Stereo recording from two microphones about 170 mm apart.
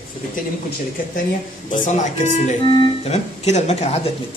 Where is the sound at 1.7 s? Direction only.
45° left (ahead or behind).